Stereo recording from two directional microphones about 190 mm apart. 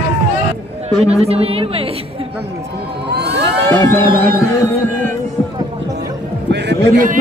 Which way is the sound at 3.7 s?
10° left (ahead or behind).